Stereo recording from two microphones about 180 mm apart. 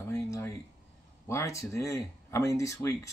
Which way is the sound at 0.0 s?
15° left (ahead or behind).